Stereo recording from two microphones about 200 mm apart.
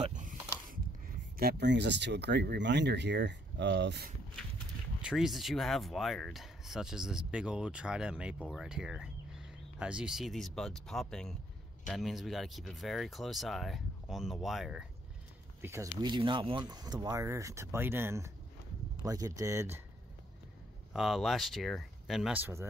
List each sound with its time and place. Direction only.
0.0 s a sound: 40° right (ahead or behind)
1.3 s speech: 50° right (ahead or behind)
5.0 s speech: centre (ahead or behind)
15.6 s speech: 15° right (ahead or behind)
16.0 s speech: 25° right (ahead or behind)
20.9 s speech: centre (ahead or behind)